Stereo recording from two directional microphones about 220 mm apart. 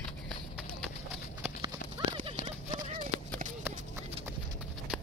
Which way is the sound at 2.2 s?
25° right (ahead or behind).